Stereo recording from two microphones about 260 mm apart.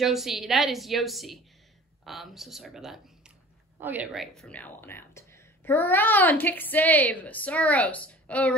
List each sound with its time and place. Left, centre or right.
0.0 s a woman's voice: centre